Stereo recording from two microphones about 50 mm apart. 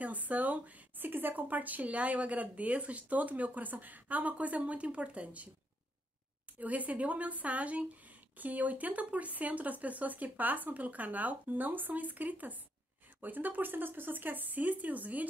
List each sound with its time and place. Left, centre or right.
0.0 s speech: right
6.6 s speech: right